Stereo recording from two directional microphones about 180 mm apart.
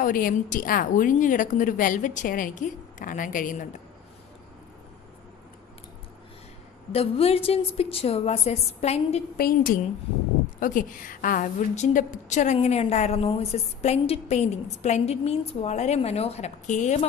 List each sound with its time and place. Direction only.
0.0 s a woman's voice: 50° left (ahead or behind)
6.9 s a woman's voice: 35° left (ahead or behind)
9.4 s a woman's voice: 50° left (ahead or behind)